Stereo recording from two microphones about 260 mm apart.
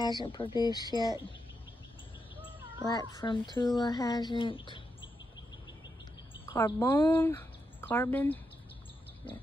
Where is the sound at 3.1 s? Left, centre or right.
Centre.